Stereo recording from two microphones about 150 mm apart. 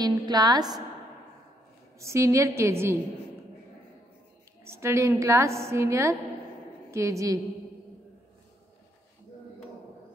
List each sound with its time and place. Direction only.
0.0 s a woman's voice: 25° right (ahead or behind)
2.0 s a woman's voice: 20° right (ahead or behind)
4.6 s a woman's voice: 20° right (ahead or behind)